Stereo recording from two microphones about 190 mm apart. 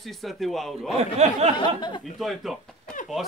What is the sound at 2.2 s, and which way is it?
Speech, centre (ahead or behind).